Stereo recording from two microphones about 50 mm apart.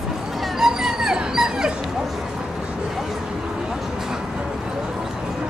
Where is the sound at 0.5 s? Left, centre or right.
Centre.